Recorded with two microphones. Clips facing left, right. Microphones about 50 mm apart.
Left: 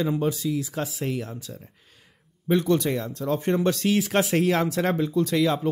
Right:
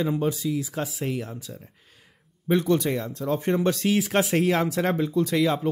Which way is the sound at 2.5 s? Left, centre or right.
Centre.